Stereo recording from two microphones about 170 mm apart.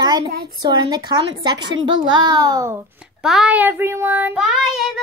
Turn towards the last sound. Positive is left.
turn(degrees=-5)  # may be behind; listen again after turning